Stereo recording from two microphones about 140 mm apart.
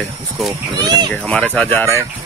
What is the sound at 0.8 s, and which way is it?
Speech, 30° right (ahead or behind).